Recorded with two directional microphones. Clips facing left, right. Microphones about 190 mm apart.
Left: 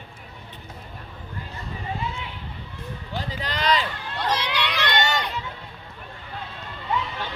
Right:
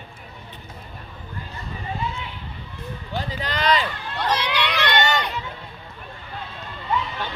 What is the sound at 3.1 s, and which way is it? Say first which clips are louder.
Run: right 3 dB; 55° right (ahead or behind).